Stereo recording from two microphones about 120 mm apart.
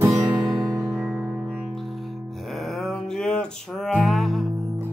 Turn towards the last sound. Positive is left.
turn(degrees=0)  # may be behind; listen again after turning